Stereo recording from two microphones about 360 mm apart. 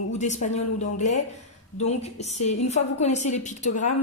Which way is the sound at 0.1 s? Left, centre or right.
Centre.